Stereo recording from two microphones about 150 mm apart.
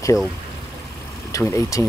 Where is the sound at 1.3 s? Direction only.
20° left (ahead or behind).